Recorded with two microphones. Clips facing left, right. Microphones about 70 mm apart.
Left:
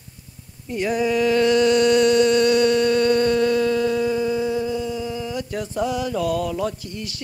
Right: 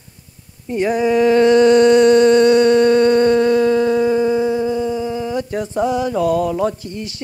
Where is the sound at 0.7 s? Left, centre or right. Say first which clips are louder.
Right 5 dB; right.